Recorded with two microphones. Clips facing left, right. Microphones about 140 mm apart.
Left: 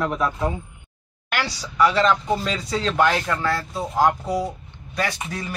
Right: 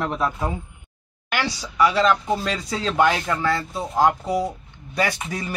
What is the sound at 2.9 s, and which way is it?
Speech, 15° right (ahead or behind).